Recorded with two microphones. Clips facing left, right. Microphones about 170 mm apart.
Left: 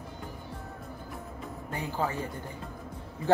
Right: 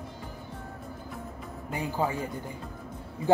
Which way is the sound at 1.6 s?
15° right (ahead or behind).